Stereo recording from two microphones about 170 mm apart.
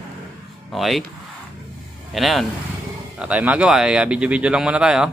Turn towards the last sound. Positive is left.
turn(degrees=-5)  # may be behind; listen again after turning